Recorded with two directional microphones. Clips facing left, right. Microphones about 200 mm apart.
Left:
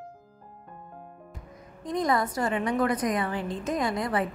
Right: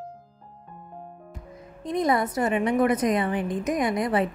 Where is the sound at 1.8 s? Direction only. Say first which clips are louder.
Right 3 dB; 25° right (ahead or behind).